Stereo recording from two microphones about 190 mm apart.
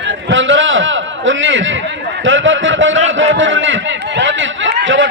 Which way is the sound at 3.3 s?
80° right.